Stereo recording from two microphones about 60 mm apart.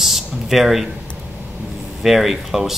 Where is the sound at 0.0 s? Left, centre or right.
Centre.